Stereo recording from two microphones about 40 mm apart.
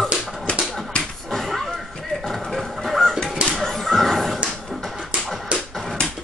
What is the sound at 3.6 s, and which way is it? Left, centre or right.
Music, centre.